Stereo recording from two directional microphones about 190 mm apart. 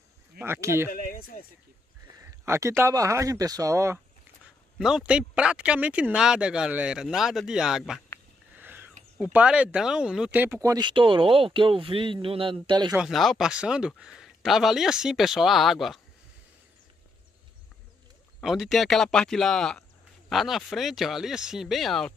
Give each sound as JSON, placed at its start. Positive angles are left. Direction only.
{"t": 0.4, "sound": "speech", "side_deg": -15}
{"t": 1.0, "sound": "speech", "side_deg": 50}
{"t": 2.1, "sound": "speech", "side_deg": -15}
{"t": 4.7, "sound": "speech", "side_deg": -5}
{"t": 8.5, "sound": "whispering", "side_deg": -10}
{"t": 9.2, "sound": "speech", "side_deg": -5}
{"t": 12.9, "sound": "speech", "side_deg": 0}
{"t": 18.4, "sound": "speech", "side_deg": 0}